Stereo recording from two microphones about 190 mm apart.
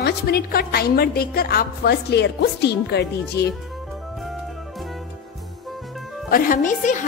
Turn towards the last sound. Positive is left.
turn(degrees=40)  # may be behind; listen again after turning